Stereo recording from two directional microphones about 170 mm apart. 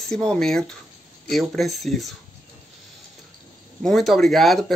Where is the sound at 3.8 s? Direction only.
Centre (ahead or behind).